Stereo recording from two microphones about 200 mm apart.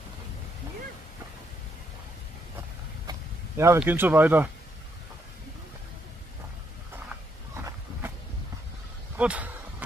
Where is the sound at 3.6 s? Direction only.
10° right (ahead or behind).